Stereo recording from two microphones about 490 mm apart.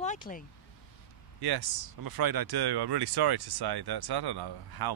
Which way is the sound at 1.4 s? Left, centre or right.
Right.